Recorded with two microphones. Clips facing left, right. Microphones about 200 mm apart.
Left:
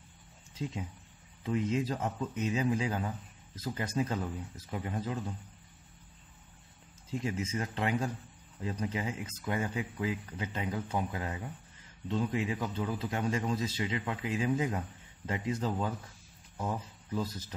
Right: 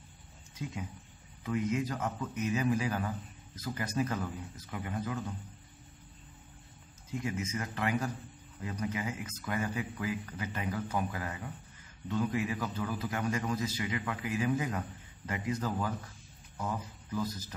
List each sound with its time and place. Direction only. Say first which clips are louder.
1.4 s speech: left 1 dB; 25° left (ahead or behind)
7.1 s speech: left 1 dB; 30° left (ahead or behind)